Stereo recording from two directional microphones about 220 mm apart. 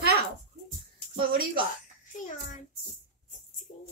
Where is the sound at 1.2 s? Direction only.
40° right (ahead or behind).